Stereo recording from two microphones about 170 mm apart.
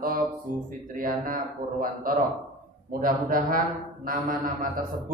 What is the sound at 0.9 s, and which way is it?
A man's voice, 55° right (ahead or behind).